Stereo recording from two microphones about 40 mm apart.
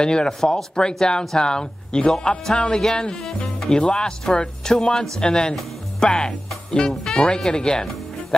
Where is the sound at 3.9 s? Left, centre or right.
Centre.